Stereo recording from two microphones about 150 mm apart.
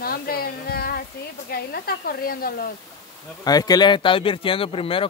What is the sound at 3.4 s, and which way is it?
Speech, 25° left (ahead or behind).